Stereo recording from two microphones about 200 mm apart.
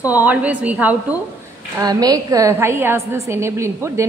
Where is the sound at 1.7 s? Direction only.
20° right (ahead or behind).